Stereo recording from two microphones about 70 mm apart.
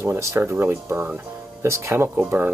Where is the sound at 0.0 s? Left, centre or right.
Right.